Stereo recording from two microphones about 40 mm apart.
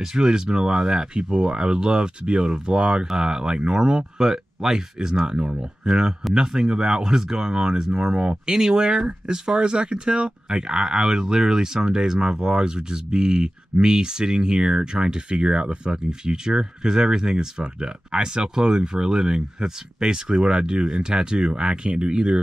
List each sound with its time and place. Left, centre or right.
0.0 s speech: centre